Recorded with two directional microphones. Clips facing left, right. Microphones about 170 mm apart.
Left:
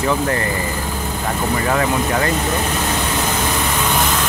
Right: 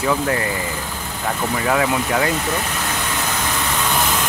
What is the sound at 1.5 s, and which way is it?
Speech, centre (ahead or behind).